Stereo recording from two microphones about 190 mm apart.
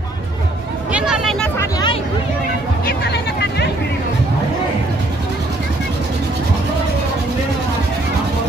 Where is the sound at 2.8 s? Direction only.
60° left (ahead or behind).